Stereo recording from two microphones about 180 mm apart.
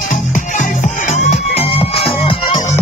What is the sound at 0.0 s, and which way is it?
Music, 50° left (ahead or behind).